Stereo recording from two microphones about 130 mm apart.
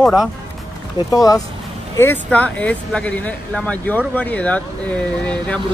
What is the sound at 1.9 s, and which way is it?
Speech, 15° left (ahead or behind).